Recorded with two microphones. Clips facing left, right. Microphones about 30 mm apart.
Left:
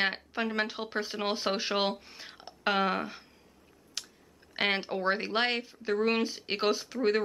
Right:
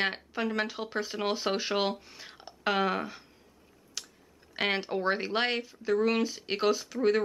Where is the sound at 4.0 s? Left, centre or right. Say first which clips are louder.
Left 1 dB; centre.